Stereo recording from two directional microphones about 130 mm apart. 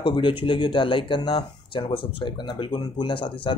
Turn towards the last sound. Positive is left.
turn(degrees=40)  # may be behind; listen again after turning